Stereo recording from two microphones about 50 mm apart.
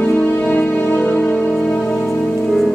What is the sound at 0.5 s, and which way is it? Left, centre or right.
Music, left.